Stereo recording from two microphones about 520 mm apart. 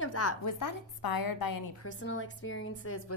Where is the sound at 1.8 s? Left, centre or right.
Left.